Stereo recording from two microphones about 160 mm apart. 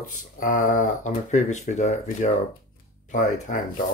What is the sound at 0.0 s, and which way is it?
Speech, 55° left (ahead or behind).